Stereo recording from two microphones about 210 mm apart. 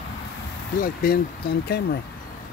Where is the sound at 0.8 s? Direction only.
45° left (ahead or behind).